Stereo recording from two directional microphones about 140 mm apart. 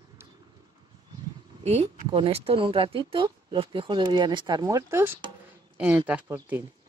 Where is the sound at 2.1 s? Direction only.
40° right (ahead or behind).